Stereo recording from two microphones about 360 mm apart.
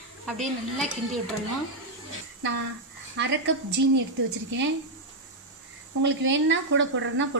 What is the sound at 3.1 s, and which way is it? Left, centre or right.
Speech, right.